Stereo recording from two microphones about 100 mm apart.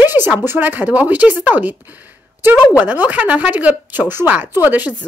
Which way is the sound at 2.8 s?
15° right (ahead or behind).